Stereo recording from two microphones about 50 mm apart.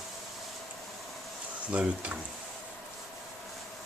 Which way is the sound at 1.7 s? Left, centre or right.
Right.